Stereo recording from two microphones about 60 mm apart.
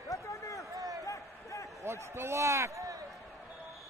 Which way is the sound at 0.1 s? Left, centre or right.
Left.